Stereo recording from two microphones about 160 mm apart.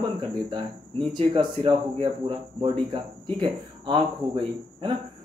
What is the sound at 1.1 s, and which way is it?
Speech, 30° right (ahead or behind).